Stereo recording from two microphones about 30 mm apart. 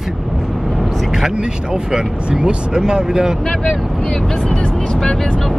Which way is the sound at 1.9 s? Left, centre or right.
Right.